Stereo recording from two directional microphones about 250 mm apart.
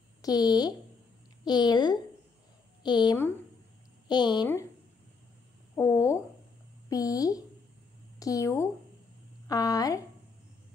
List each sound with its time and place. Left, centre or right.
0.2 s speech: centre
5.8 s speech: centre